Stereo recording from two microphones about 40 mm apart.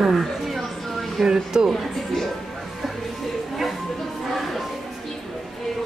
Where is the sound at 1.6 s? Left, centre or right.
Centre.